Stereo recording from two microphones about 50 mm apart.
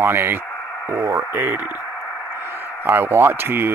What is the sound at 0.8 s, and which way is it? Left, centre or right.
Speech, right.